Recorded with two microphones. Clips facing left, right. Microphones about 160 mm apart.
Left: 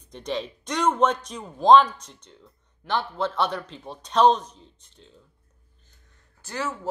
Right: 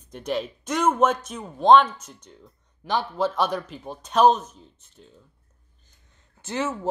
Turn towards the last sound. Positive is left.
turn(degrees=-25)  # may be behind; listen again after turning